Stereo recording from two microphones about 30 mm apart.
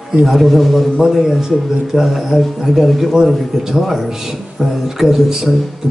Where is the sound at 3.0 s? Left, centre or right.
Centre.